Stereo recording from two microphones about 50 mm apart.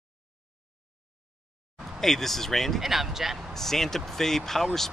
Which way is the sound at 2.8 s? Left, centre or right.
Centre.